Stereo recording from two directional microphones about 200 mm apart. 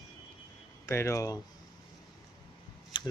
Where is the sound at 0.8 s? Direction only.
15° left (ahead or behind).